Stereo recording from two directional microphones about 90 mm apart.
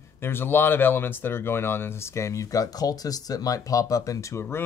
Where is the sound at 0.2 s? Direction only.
25° left (ahead or behind).